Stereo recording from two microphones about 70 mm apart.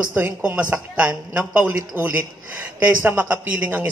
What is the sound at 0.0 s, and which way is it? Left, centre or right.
A woman's voice, right.